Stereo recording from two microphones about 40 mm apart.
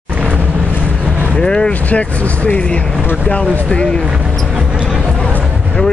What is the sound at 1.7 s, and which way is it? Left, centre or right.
Speech, left.